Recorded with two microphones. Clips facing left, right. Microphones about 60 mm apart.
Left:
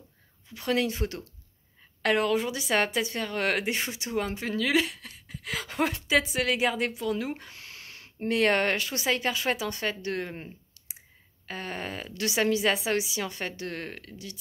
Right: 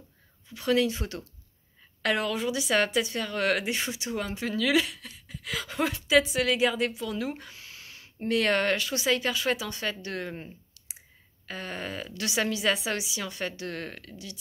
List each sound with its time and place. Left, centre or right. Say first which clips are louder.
0.6 s speech: right 2 dB; left
7.5 s a sound: left 1 dB; left
8.3 s speech: left 1 dB; left